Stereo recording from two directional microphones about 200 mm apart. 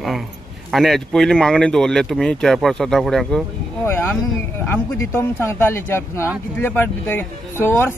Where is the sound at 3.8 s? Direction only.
10° left (ahead or behind).